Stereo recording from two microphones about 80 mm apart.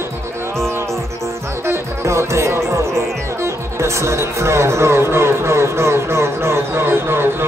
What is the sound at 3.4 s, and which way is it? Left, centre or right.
Speech, right.